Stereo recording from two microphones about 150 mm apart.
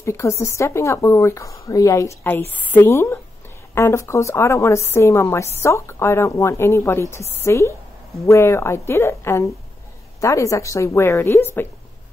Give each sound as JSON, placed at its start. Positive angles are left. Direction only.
{"t": 0.0, "sound": "a woman's voice", "side_deg": 20}